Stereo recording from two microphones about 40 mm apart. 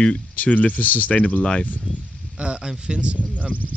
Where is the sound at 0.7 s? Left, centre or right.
Left.